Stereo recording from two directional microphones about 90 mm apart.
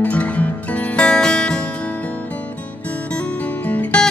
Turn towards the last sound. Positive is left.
turn(degrees=15)  # may be behind; listen again after turning